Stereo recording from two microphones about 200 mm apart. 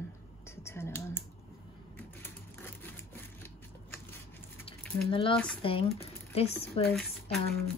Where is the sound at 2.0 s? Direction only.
10° left (ahead or behind).